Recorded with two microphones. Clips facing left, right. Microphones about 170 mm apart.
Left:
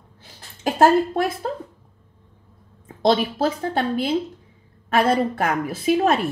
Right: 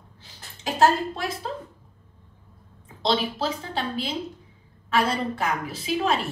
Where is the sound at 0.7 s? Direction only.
50° left (ahead or behind).